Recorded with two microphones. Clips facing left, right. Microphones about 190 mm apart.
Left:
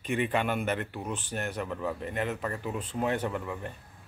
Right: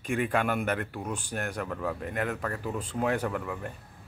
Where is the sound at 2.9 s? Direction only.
5° right (ahead or behind).